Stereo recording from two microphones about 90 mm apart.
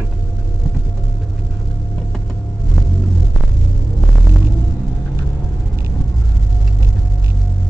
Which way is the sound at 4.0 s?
5° left (ahead or behind).